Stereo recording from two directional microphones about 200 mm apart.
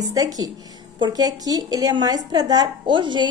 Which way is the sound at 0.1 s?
20° right (ahead or behind).